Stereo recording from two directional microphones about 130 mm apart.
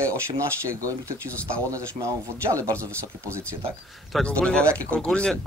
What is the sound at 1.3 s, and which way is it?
Speech, 10° left (ahead or behind).